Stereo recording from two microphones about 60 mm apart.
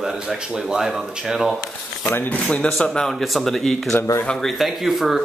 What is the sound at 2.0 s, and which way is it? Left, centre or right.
Speech, left.